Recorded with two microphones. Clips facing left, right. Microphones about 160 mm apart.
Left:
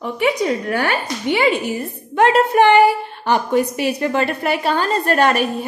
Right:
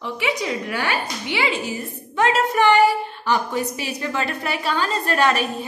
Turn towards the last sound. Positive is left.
turn(degrees=50)  # may be behind; listen again after turning